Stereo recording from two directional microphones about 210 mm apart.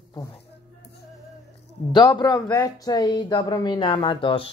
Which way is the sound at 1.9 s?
20° left (ahead or behind).